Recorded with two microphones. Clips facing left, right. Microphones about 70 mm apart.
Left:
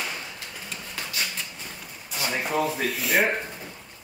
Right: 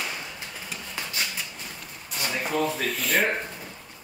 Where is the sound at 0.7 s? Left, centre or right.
Centre.